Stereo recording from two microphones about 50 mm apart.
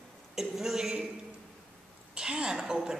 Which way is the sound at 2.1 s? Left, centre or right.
Centre.